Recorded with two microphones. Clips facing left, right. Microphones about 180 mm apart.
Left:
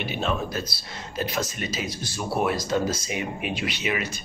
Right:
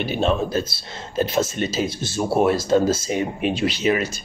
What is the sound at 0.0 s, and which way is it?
Speech, 30° right (ahead or behind).